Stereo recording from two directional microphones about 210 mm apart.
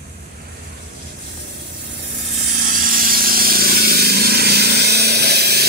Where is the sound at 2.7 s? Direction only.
40° right (ahead or behind).